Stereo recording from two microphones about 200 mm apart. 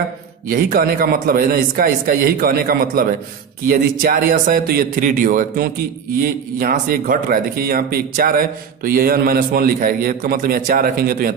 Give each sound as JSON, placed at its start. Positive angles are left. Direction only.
{"t": 0.5, "sound": "speech", "side_deg": -45}